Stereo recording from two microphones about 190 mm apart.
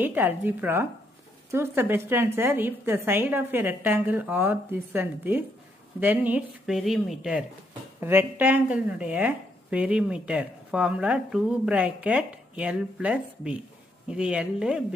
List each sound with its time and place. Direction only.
0.0 s speech: 10° right (ahead or behind)